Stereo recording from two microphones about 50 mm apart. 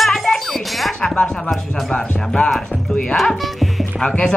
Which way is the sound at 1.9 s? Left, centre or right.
Centre.